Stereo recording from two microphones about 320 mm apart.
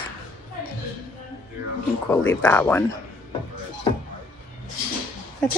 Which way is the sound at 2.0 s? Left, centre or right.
Centre.